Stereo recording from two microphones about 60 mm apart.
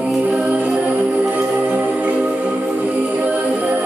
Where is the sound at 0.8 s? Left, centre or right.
Centre.